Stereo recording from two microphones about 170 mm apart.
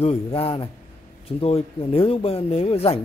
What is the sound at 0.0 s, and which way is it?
Speech, 35° left (ahead or behind).